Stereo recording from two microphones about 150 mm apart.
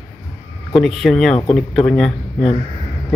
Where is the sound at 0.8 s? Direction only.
Centre (ahead or behind).